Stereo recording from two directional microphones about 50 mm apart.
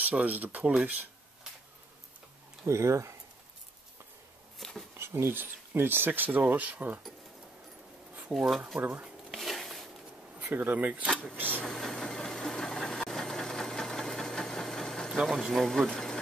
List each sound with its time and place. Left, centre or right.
0.0 s speech: right
2.6 s speech: right
4.6 s a sound: centre
4.9 s writing: right
5.8 s speech: right
8.3 s speech: centre
8.7 s speech: right
9.3 s a sound: centre
10.4 s speech: right
11.3 s vehicle: right
11.6 s vehicle: centre
15.3 s speech: centre
15.9 s a sound: centre